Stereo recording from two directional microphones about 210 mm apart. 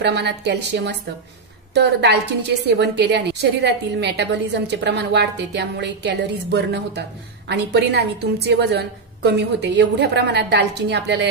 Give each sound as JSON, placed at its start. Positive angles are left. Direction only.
{"t": 0.0, "sound": "a woman's voice", "side_deg": -55}